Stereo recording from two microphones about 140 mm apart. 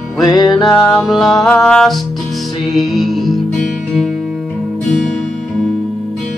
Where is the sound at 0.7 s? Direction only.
5° left (ahead or behind).